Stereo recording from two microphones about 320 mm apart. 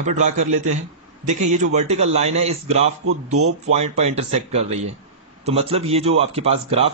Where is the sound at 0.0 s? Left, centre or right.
Right.